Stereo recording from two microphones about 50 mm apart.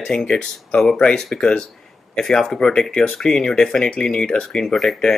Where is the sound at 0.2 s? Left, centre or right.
Centre.